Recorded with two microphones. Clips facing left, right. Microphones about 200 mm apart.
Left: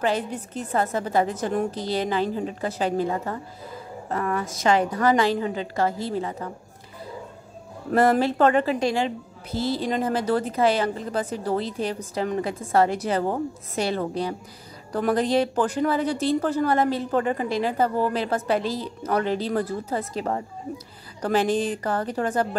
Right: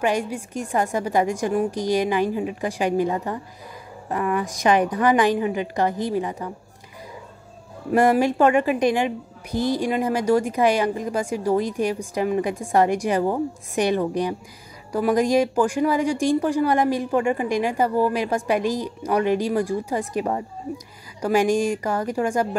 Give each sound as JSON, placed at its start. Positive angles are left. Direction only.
{"t": 0.0, "sound": "a woman's voice", "side_deg": -15}
{"t": 7.9, "sound": "a woman's voice", "side_deg": -15}